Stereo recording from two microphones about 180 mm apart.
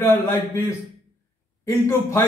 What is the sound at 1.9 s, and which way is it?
Speech, 15° left (ahead or behind).